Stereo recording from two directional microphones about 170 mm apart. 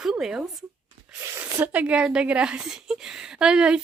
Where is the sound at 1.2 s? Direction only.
15° right (ahead or behind).